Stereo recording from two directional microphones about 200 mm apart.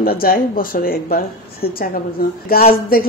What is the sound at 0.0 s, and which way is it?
Speech, 50° left (ahead or behind).